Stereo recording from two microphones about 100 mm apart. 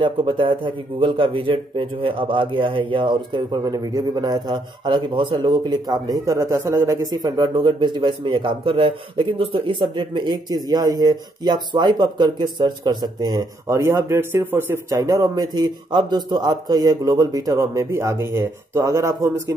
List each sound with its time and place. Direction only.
0.0 s a man's voice: 55° right (ahead or behind); by 14.8 s 20° right (ahead or behind)
14.9 s a man's voice: 35° right (ahead or behind)